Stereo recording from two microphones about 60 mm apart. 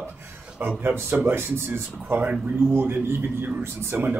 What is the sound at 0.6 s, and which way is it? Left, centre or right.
A man's voice, right.